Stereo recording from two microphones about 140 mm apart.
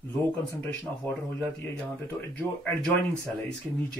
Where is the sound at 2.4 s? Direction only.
15° left (ahead or behind).